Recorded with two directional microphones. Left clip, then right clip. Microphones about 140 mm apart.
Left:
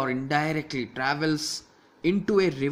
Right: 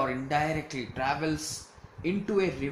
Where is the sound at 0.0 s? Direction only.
65° left (ahead or behind).